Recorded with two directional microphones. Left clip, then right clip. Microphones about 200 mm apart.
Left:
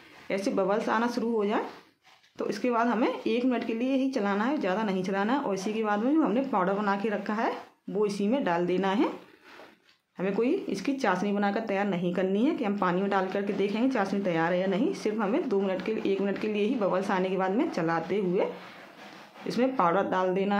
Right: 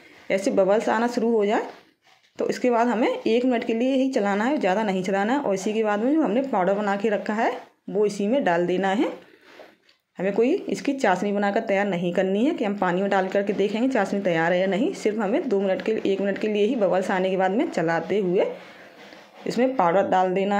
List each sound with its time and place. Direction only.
0.3 s speech: 15° right (ahead or behind)
10.1 s speech: 10° right (ahead or behind)